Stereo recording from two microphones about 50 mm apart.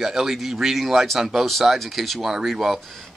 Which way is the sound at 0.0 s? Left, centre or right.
Centre.